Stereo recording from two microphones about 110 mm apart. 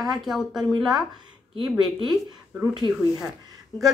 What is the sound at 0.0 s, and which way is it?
Speech, centre (ahead or behind).